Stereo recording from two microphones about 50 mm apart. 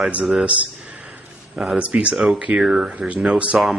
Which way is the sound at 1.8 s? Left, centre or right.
Right.